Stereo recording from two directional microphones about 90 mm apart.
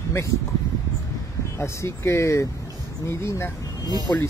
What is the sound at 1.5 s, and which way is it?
Speech, 30° left (ahead or behind).